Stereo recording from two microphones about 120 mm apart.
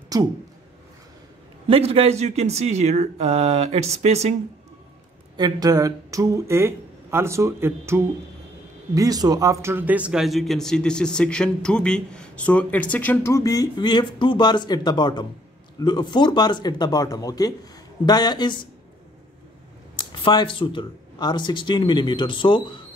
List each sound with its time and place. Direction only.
0.1 s speech: 30° right (ahead or behind)
1.7 s speech: 55° right (ahead or behind)
5.4 s speech: 30° right (ahead or behind); by 18.7 s 40° left (ahead or behind)
20.0 s speech: 40° left (ahead or behind)